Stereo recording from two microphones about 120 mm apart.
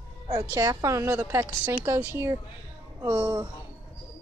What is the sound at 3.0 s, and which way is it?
Speech, 35° right (ahead or behind).